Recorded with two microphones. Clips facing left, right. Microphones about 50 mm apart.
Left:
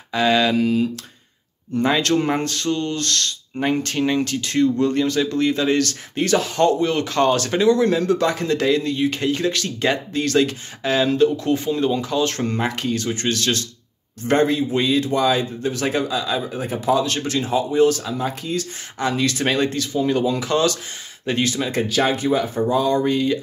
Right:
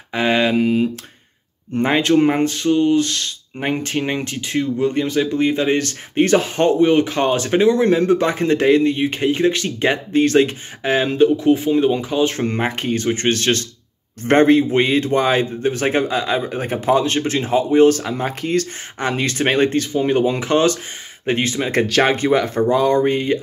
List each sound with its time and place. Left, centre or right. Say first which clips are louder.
0.1 s speech: right 1 dB; right
2.0 s speech: right 5 dB; centre
11.2 s speech: right 5 dB; centre; by 18.7 s right
18.9 s speech: right 1 dB; right
21.7 s speech: right 5 dB; right